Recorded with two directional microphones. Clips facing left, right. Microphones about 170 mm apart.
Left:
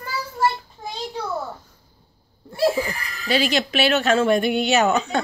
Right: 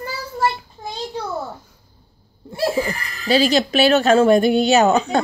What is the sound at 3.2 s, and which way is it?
Speech, 35° right (ahead or behind).